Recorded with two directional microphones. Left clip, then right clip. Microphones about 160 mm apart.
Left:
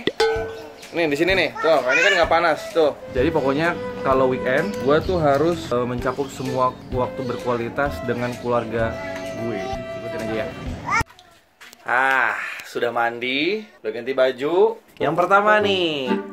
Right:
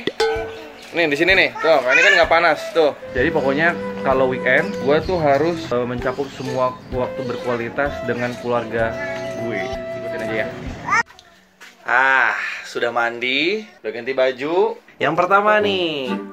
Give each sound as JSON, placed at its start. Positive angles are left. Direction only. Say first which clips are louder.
{"t": 0.0, "sound": "music", "louder": "even", "side_deg": 0}
{"t": 0.9, "sound": "speech", "louder": "right 4 dB", "side_deg": 0}
{"t": 3.2, "sound": "speech", "louder": "right 2 dB", "side_deg": 15}
{"t": 4.4, "sound": "speech", "louder": "right 4 dB", "side_deg": 5}
{"t": 4.8, "sound": "speech", "louder": "left 1 dB", "side_deg": 15}
{"t": 7.4, "sound": "speech", "louder": "right 1 dB", "side_deg": 10}
{"t": 9.4, "sound": "music", "louder": "right 2 dB", "side_deg": 5}
{"t": 11.9, "sound": "speech", "louder": "right 3 dB", "side_deg": 0}